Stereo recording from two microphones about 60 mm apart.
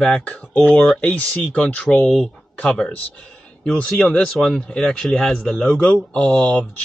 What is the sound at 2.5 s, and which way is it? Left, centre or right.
Speech, left.